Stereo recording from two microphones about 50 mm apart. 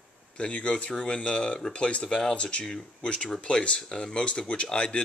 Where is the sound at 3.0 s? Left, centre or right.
Left.